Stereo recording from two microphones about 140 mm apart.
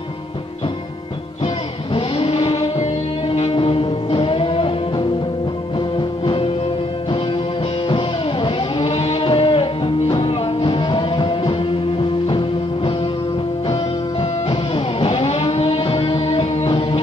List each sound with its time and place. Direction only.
2.0 s music: 45° left (ahead or behind)
7.9 s music: 40° left (ahead or behind)
14.5 s music: 40° left (ahead or behind)